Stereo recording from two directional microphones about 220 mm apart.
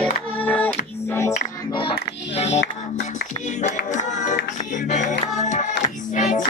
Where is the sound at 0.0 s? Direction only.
5° left (ahead or behind).